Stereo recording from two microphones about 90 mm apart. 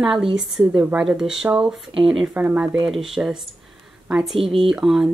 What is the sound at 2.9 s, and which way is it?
Speech, centre (ahead or behind).